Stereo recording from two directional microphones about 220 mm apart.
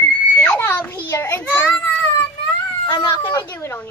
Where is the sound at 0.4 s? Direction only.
10° left (ahead or behind).